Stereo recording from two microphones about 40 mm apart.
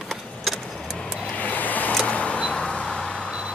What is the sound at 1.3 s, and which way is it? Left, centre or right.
Vehicle, left.